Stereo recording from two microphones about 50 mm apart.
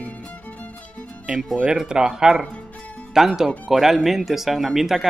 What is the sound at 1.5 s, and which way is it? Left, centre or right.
Speech, centre.